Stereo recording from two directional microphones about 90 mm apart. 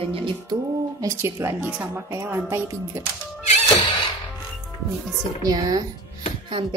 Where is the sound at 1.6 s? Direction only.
20° right (ahead or behind).